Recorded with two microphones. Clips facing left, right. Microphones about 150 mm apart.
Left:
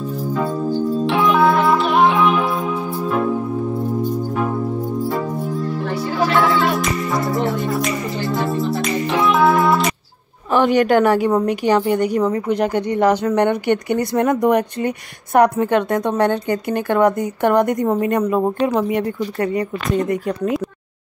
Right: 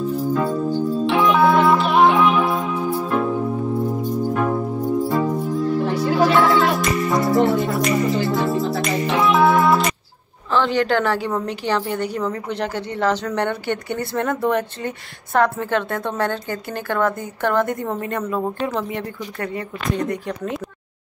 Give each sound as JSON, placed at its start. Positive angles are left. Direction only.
{"t": 1.0, "sound": "music", "side_deg": 0}
{"t": 6.3, "sound": "music", "side_deg": 0}
{"t": 8.3, "sound": "music", "side_deg": 0}
{"t": 10.5, "sound": "a woman's voice", "side_deg": 15}